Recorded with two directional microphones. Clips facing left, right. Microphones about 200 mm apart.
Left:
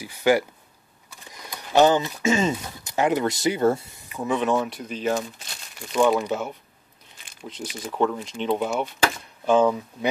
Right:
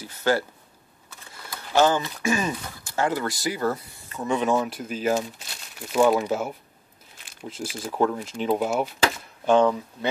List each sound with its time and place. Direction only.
0.0 s a sound: 15° left (ahead or behind)
1.3 s speech: 15° left (ahead or behind)
4.1 s speech: 5° left (ahead or behind)